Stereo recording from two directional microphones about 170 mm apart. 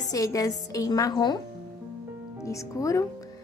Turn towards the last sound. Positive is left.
turn(degrees=20)  # may be behind; listen again after turning